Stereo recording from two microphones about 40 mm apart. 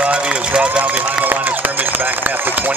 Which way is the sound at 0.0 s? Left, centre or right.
Right.